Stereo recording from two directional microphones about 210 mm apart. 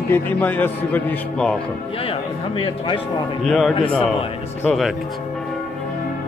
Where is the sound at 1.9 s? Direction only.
25° left (ahead or behind).